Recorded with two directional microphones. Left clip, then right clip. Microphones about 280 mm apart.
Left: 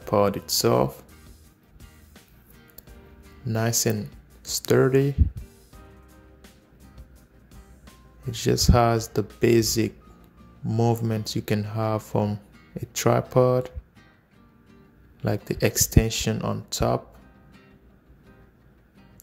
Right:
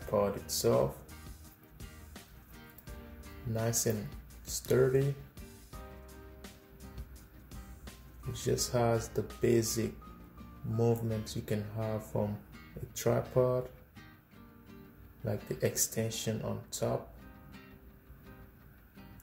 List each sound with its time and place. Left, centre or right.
0.1 s speech: left
1.8 s music: centre
3.5 s speech: left
5.3 s music: centre
8.3 s speech: left
15.2 s speech: left
17.2 s music: centre